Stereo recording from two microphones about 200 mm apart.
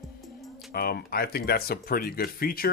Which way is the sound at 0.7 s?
50° left (ahead or behind).